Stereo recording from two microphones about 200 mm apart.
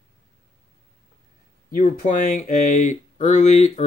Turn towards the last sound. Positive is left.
turn(degrees=35)  # may be behind; listen again after turning